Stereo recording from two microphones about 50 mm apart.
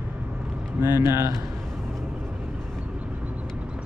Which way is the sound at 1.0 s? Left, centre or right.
Right.